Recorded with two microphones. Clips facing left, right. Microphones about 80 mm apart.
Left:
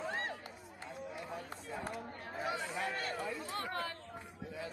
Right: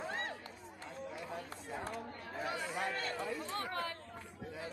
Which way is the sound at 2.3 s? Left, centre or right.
Left.